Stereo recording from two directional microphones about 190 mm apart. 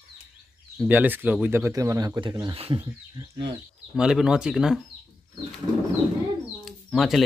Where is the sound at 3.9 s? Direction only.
5° right (ahead or behind).